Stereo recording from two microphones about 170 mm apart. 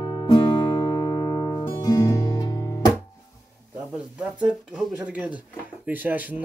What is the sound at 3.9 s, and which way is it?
Speech, 5° right (ahead or behind).